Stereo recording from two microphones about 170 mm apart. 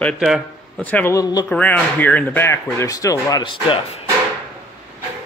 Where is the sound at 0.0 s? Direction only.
Centre (ahead or behind).